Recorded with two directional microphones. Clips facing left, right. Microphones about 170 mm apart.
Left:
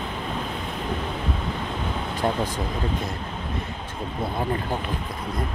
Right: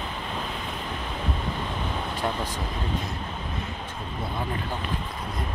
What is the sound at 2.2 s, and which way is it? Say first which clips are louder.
Speech: left 5 dB; 35° left (ahead or behind).